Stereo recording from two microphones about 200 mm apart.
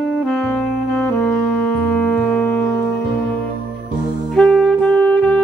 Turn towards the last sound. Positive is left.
turn(degrees=5)  # may be behind; listen again after turning